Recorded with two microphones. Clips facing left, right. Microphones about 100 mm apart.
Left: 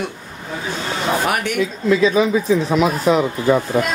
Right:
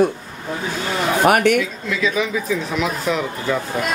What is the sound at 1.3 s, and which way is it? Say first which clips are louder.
Speech: right 7 dB; 60° right (ahead or behind).